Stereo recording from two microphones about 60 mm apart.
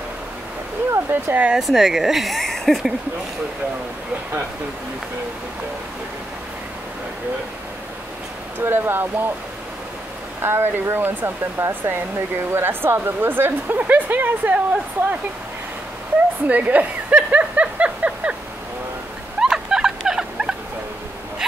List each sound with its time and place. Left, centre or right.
0.9 s speech: right
1.6 s speech: centre
8.5 s speech: right
10.4 s speech: right
13.7 s speech: right
16.4 s speech: right
19.4 s a sound: centre